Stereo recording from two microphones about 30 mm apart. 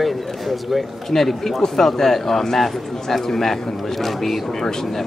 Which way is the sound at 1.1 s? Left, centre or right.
Centre.